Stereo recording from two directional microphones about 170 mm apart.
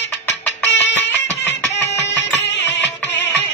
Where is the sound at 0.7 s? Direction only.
90° left.